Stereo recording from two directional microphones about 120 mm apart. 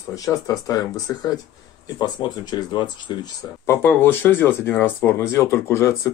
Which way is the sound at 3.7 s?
20° left (ahead or behind).